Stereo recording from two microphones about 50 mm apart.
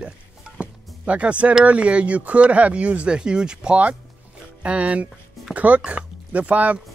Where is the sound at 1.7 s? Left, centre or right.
Right.